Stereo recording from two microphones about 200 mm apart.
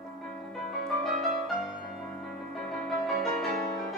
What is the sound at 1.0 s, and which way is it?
Music, centre (ahead or behind).